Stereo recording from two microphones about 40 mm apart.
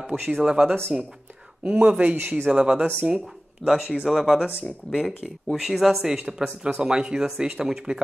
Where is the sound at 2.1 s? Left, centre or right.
Right.